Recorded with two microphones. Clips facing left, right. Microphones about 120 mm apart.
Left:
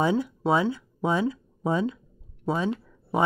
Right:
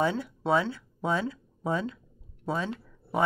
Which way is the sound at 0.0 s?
15° left (ahead or behind).